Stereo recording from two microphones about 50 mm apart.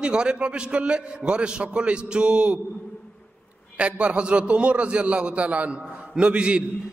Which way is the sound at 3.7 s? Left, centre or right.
Right.